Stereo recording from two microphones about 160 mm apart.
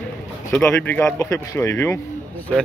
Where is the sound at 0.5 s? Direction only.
10° left (ahead or behind).